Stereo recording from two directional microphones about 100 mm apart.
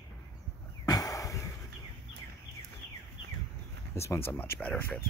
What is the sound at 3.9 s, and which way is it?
Speech, 25° left (ahead or behind).